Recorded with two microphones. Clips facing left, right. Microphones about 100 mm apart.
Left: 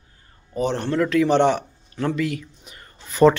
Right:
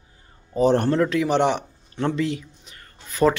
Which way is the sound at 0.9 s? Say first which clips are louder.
Left 1 dB; 25° right (ahead or behind).